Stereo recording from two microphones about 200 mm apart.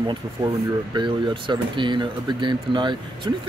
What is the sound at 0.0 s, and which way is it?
Speech, 20° right (ahead or behind).